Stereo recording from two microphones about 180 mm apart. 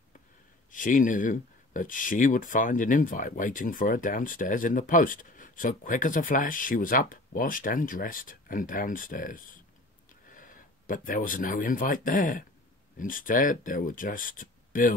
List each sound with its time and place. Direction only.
0.7 s speech: 45° left (ahead or behind)